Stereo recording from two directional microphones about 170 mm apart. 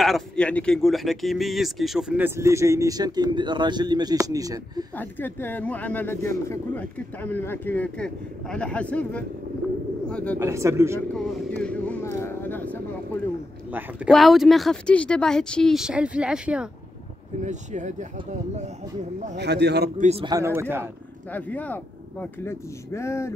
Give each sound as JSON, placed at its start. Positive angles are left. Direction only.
{"t": 0.0, "sound": "speech", "side_deg": 5}
{"t": 4.9, "sound": "speech", "side_deg": 10}
{"t": 10.4, "sound": "speech", "side_deg": -15}
{"t": 11.1, "sound": "speech", "side_deg": 5}
{"t": 13.7, "sound": "speech", "side_deg": -10}
{"t": 17.4, "sound": "speech", "side_deg": -45}
{"t": 19.3, "sound": "a man's voice", "side_deg": -80}
{"t": 20.0, "sound": "a man's voice", "side_deg": -40}
{"t": 20.2, "sound": "speech", "side_deg": -20}
{"t": 21.3, "sound": "speech", "side_deg": 10}